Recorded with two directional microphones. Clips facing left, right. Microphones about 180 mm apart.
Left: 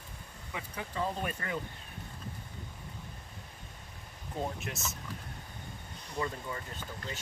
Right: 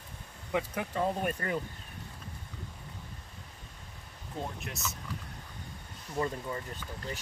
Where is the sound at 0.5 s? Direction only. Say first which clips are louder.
Right 9 dB; 65° right (ahead or behind).